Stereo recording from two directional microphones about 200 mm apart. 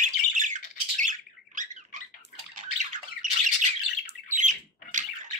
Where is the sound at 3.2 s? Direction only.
40° right (ahead or behind).